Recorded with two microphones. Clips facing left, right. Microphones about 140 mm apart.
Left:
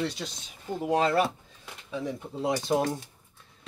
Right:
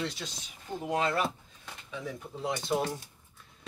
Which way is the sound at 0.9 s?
35° left (ahead or behind).